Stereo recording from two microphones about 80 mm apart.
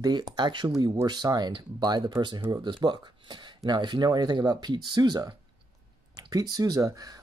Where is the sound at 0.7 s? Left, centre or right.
Right.